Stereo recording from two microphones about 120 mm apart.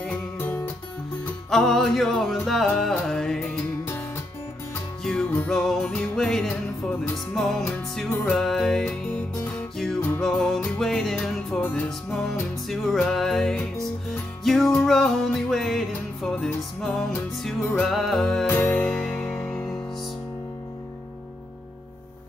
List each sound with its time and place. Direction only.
0.0 s music: 15° left (ahead or behind)
1.5 s music: 5° left (ahead or behind)
5.0 s music: 5° left (ahead or behind)
10.2 s music: 5° left (ahead or behind)
18.5 s music: 20° left (ahead or behind)
18.9 s music: 5° left (ahead or behind)